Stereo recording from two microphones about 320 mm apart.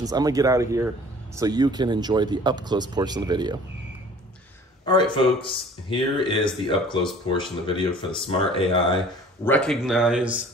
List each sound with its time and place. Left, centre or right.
0.0 s speech: centre
4.8 s speech: centre
9.4 s speech: centre